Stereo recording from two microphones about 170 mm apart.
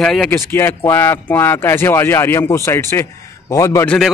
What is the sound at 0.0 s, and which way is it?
Speech, centre (ahead or behind).